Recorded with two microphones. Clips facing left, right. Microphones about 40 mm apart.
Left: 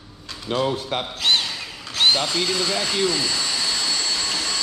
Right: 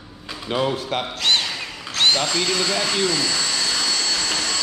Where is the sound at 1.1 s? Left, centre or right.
Centre.